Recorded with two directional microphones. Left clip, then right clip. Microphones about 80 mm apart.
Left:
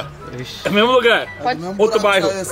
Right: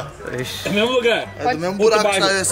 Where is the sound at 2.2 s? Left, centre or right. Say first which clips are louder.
Right 2 dB; centre.